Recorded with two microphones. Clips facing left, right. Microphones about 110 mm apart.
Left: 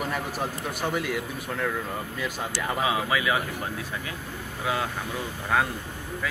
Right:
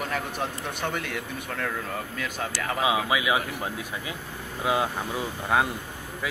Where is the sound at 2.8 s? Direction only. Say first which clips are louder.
Right 2 dB; 15° right (ahead or behind).